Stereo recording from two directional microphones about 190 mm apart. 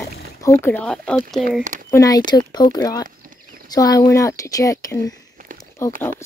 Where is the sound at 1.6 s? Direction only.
40° right (ahead or behind).